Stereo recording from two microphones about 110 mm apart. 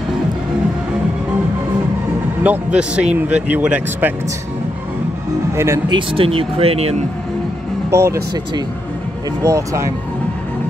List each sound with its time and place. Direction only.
2.4 s speech: 10° right (ahead or behind)
5.9 s speech: 50° right (ahead or behind)
7.9 s speech: 25° right (ahead or behind)
9.4 s speech: 30° right (ahead or behind)